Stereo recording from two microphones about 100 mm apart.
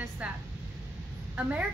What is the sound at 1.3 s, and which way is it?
Speech, 15° right (ahead or behind).